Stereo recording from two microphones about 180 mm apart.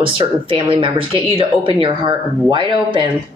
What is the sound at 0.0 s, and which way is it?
Speech, 30° right (ahead or behind).